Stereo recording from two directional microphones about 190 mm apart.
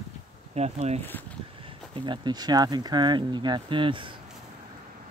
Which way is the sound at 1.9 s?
25° right (ahead or behind).